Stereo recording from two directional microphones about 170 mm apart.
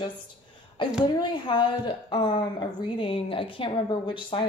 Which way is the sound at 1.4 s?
25° left (ahead or behind).